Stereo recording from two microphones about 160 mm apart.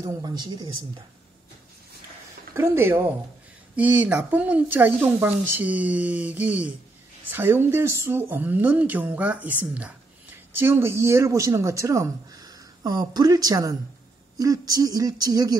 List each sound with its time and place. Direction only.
0.0 s speech: 20° right (ahead or behind)
2.5 s speech: 15° right (ahead or behind)